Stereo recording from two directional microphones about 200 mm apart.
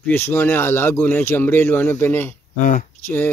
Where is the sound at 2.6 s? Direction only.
45° left (ahead or behind).